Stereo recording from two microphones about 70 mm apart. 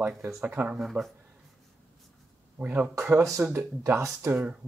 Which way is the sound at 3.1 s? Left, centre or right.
Right.